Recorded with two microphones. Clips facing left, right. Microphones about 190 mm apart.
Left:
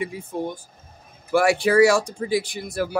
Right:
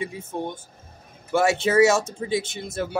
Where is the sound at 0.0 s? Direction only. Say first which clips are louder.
Left 2 dB; 25° right (ahead or behind).